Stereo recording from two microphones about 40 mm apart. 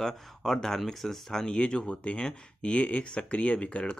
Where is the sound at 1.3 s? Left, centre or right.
Centre.